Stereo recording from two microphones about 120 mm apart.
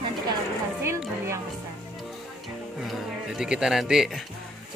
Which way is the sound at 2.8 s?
Centre (ahead or behind).